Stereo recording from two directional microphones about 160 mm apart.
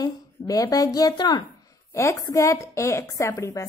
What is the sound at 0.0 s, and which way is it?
A woman's voice, 20° left (ahead or behind).